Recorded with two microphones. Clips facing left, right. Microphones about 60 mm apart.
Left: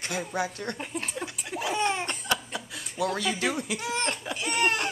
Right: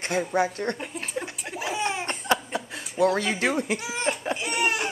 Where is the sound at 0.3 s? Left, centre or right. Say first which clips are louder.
Right 6 dB; right.